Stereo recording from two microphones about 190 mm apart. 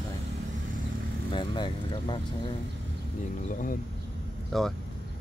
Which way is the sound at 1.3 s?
25° left (ahead or behind).